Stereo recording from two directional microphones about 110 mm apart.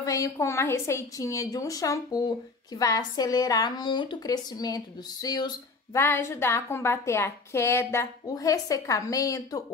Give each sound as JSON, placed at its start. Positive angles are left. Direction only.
{"t": 0.0, "sound": "a woman's voice", "side_deg": 30}
{"t": 5.9, "sound": "a woman's voice", "side_deg": 20}